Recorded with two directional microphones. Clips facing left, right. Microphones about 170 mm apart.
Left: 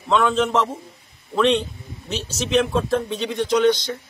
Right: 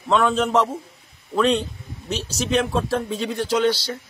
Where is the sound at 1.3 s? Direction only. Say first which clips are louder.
Left 1 dB; centre (ahead or behind).